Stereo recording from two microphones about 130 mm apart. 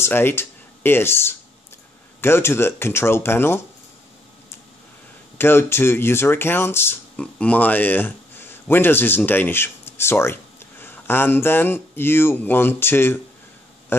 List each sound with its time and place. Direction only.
0.0 s speech: 15° left (ahead or behind)
5.4 s speech: 20° left (ahead or behind)